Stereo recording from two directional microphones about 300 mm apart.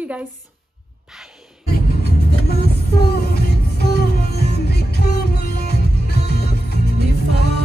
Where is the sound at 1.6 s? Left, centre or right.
Left.